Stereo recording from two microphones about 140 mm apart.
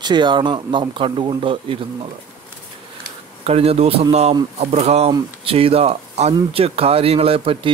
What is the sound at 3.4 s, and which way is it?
A man's voice, 45° right (ahead or behind).